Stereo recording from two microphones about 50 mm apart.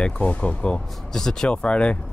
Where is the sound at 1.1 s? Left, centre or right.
Centre.